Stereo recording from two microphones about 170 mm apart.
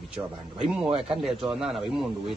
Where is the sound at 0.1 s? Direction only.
5° right (ahead or behind).